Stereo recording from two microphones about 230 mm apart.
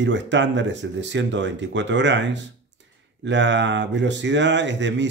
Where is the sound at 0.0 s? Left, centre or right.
Right.